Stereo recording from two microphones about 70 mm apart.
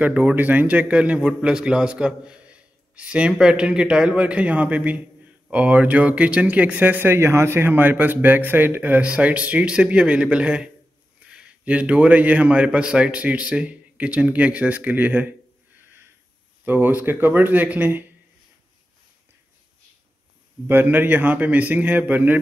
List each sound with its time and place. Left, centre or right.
0.0 s a man's voice: right
7.2 s a man's voice: right
16.6 s a man's voice: right
20.6 s a man's voice: right